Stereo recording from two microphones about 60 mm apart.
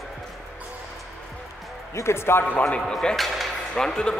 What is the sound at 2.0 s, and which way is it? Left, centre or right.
Speech, left.